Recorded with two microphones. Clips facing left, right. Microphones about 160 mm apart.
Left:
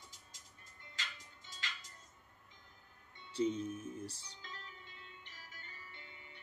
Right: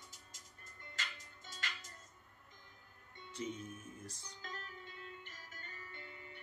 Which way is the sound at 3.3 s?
30° left (ahead or behind).